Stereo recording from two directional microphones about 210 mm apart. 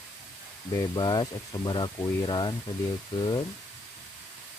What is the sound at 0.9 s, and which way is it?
Speech, 20° left (ahead or behind).